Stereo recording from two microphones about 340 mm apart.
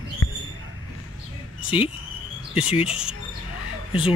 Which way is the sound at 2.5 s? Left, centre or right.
Centre.